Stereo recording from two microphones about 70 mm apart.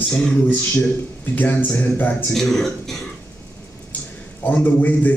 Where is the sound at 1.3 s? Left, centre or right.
Left.